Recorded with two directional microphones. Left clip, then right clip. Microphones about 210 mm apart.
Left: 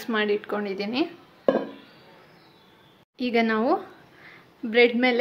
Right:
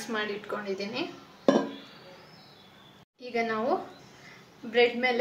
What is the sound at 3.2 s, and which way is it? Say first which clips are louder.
A woman's voice: left 6 dB; 45° left (ahead or behind).